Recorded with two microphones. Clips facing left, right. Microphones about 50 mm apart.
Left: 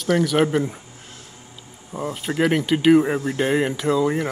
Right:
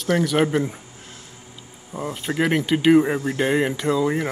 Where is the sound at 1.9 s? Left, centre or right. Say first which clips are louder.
Left 1 dB; centre.